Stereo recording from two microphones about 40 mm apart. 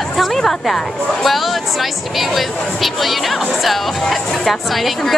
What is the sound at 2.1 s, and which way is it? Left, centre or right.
Speech, centre.